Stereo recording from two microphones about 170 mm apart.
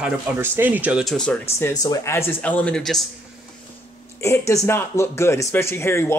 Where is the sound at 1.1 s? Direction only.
5° left (ahead or behind).